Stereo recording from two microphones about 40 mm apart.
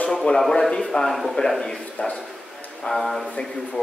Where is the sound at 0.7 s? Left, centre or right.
Left.